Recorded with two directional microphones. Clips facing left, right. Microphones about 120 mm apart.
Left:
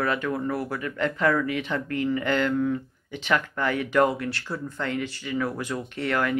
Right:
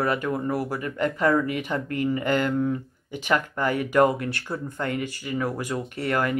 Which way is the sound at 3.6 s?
45° right (ahead or behind).